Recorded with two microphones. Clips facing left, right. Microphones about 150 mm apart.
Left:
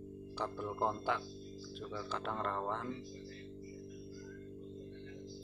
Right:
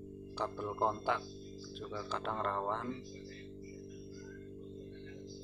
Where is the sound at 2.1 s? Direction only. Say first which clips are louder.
Right 2 dB; 5° left (ahead or behind).